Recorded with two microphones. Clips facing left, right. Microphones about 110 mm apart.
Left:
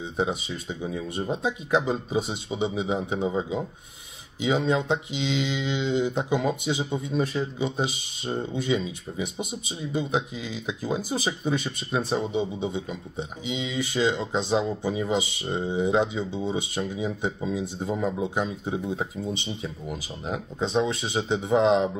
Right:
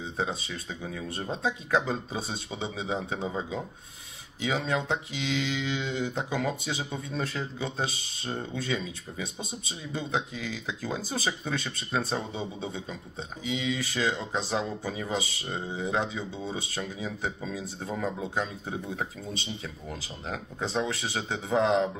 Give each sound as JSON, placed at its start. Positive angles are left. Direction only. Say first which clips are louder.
{"t": 0.2, "sound": "speech", "louder": "left 5 dB", "side_deg": 20}